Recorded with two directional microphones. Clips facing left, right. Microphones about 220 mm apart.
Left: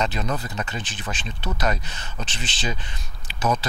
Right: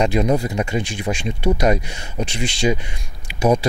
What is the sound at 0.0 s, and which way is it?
Speech, 15° right (ahead or behind).